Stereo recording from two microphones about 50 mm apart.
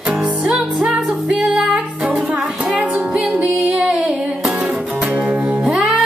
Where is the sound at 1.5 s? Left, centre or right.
Centre.